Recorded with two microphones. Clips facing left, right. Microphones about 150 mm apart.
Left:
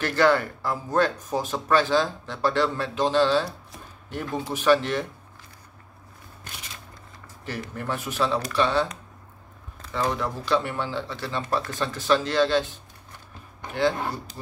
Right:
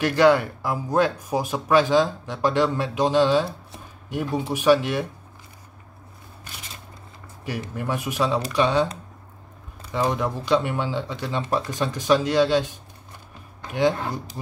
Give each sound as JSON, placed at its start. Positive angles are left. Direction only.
{"t": 0.0, "sound": "speech", "side_deg": -15}
{"t": 7.4, "sound": "speech", "side_deg": -15}
{"t": 9.8, "sound": "speech", "side_deg": -15}